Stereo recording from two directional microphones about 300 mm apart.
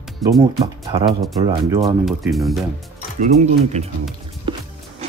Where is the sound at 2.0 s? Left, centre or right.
Centre.